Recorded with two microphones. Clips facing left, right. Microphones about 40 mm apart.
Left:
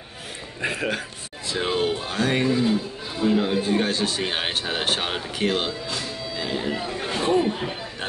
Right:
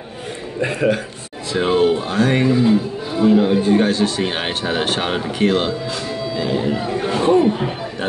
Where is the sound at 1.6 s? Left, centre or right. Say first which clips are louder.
Right 8 dB; centre.